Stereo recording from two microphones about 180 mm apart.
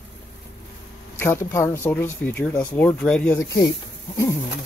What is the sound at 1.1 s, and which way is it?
Speech, 15° left (ahead or behind).